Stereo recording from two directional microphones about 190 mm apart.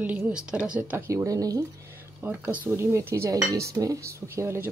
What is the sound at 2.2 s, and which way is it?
Speech, 10° right (ahead or behind).